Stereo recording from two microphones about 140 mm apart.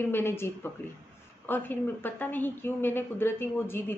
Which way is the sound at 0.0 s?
15° left (ahead or behind).